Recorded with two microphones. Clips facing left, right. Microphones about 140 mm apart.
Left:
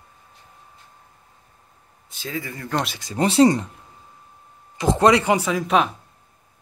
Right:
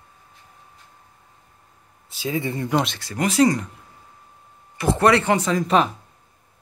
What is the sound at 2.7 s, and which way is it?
Speech, centre (ahead or behind).